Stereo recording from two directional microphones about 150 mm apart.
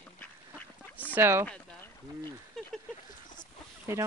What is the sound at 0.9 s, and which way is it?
Speech, 10° right (ahead or behind).